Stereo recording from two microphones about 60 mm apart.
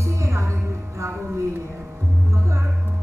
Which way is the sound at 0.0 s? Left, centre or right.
Right.